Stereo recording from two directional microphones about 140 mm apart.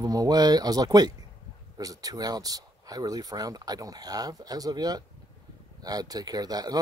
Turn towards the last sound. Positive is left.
turn(degrees=-30)  # may be behind; listen again after turning